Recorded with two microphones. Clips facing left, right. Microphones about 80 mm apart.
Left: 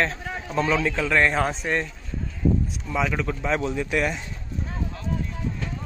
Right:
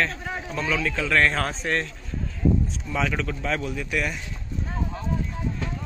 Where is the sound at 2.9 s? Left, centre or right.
Centre.